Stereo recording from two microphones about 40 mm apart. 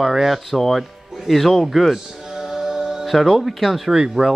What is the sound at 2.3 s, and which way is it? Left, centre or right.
Music, centre.